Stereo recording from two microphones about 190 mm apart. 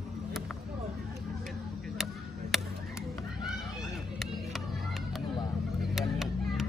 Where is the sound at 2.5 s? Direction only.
Centre (ahead or behind).